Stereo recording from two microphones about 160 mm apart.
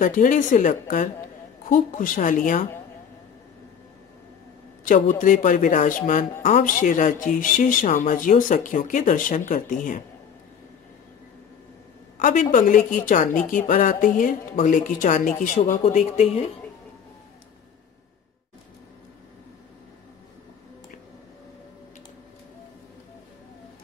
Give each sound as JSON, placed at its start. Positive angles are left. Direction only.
{"t": 0.0, "sound": "speech", "side_deg": 55}
{"t": 4.8, "sound": "a man's voice", "side_deg": 55}
{"t": 12.2, "sound": "speech", "side_deg": 60}